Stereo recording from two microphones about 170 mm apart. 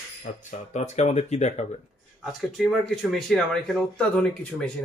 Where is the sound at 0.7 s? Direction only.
45° left (ahead or behind).